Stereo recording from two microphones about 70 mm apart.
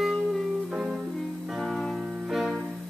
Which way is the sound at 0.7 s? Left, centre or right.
Centre.